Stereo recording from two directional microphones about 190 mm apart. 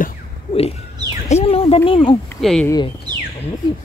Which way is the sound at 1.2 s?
35° left (ahead or behind).